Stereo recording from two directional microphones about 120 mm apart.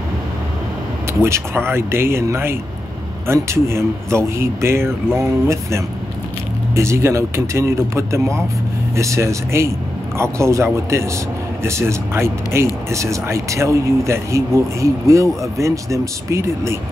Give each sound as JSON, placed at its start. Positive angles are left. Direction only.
{"t": 1.2, "sound": "speech", "side_deg": -20}